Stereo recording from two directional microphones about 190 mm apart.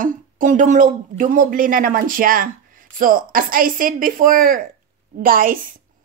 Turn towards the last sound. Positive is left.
turn(degrees=-45)  # may be behind; listen again after turning